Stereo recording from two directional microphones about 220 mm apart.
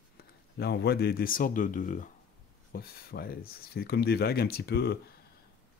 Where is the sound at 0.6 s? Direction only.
45° left (ahead or behind).